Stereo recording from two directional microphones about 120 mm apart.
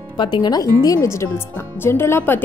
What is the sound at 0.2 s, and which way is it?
Speech, 40° left (ahead or behind).